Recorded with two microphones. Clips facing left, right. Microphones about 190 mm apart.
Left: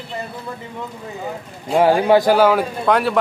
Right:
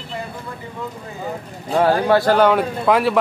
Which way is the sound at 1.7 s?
15° left (ahead or behind).